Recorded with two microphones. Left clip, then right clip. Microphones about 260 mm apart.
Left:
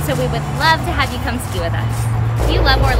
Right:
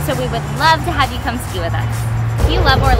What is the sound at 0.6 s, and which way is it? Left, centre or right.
Speech, centre.